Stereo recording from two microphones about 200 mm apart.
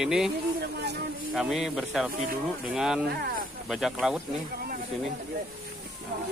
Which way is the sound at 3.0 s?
50° right (ahead or behind).